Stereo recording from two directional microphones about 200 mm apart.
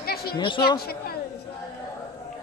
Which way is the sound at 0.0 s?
50° left (ahead or behind).